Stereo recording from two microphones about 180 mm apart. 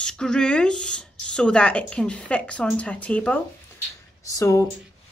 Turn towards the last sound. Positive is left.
turn(degrees=20)  # may be behind; listen again after turning